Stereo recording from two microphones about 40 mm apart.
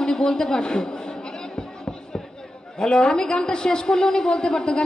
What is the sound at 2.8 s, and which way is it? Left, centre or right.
A woman's voice, centre.